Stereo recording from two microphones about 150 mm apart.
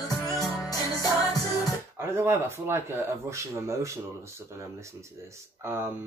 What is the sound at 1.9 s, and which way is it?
Speech, 15° right (ahead or behind).